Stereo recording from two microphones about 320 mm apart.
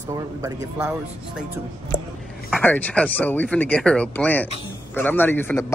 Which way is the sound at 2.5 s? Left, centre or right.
Centre.